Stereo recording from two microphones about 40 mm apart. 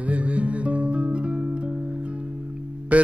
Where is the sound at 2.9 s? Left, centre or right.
Right.